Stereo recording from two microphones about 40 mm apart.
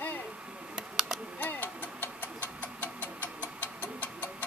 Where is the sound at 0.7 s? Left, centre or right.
Centre.